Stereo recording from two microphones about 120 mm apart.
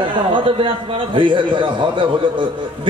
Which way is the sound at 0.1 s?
45° right (ahead or behind).